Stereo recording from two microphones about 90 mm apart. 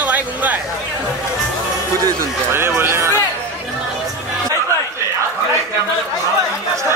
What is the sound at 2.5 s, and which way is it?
Speech, 25° right (ahead or behind).